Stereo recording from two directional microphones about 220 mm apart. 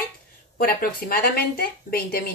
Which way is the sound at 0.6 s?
40° left (ahead or behind).